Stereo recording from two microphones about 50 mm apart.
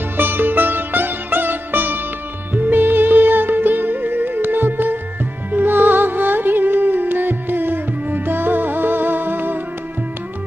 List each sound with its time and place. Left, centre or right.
0.2 s music: right